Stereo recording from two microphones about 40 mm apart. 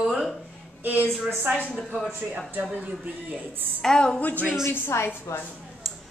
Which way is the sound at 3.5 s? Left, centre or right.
Right.